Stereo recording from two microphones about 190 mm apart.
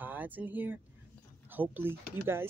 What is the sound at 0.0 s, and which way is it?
Speech, 10° right (ahead or behind).